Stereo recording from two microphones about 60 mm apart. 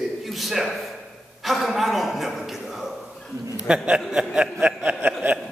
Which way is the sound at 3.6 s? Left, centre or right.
Centre.